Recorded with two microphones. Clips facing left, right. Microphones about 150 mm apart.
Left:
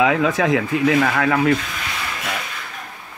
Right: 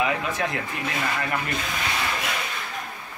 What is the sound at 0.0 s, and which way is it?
Speech, 90° left.